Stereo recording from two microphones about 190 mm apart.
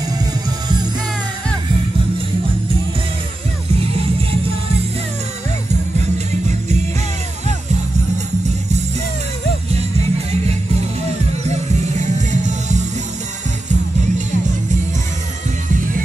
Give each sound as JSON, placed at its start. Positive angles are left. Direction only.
{"t": 9.8, "sound": "music", "side_deg": -35}
{"t": 11.9, "sound": "music", "side_deg": -40}